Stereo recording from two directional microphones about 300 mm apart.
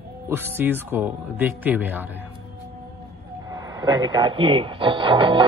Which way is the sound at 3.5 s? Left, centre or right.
Centre.